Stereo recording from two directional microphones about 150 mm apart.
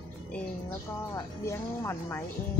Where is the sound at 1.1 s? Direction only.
20° left (ahead or behind).